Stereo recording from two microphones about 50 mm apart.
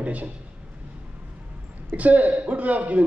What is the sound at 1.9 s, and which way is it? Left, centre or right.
A man's voice, right.